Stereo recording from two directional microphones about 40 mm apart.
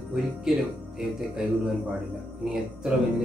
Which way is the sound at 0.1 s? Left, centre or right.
Centre.